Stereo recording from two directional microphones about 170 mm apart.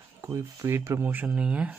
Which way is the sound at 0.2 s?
15° right (ahead or behind).